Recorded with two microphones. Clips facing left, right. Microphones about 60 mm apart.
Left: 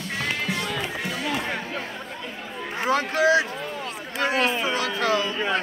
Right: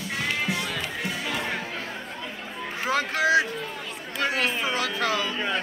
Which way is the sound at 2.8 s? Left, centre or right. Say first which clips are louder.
Left 3 dB; left.